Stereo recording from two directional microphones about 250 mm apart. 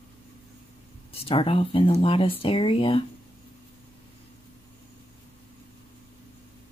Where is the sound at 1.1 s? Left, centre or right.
Left.